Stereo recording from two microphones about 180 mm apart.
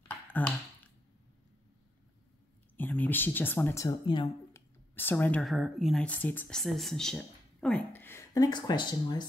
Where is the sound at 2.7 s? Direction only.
10° left (ahead or behind); by 4.3 s 25° left (ahead or behind).